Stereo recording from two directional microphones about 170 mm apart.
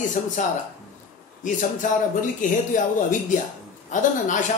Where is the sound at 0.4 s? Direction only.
45° left (ahead or behind).